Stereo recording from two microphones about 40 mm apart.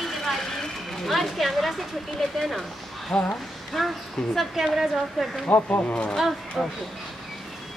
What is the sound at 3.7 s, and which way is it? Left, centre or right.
Speech, centre.